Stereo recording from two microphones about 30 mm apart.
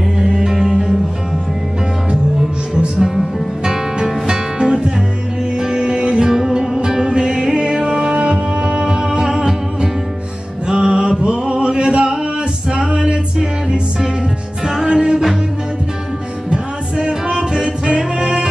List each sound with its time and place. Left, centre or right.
0.2 s music: right
3.6 s music: right
8.1 s music: right
10.7 s music: right
14.9 s music: right
16.4 s music: right
17.3 s music: right